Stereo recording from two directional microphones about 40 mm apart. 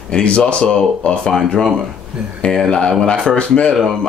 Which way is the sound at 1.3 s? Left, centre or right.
Centre.